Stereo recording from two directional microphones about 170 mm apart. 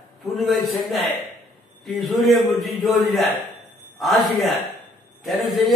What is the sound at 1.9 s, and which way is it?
A man's voice, centre (ahead or behind).